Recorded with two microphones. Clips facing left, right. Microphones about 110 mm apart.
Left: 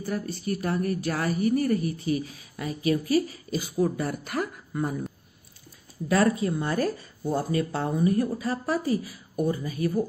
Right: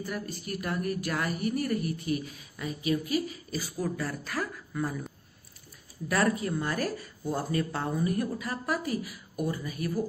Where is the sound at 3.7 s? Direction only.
25° left (ahead or behind).